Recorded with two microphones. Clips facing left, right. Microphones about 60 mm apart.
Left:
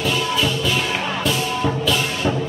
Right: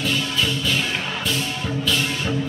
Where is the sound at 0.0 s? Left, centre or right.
Centre.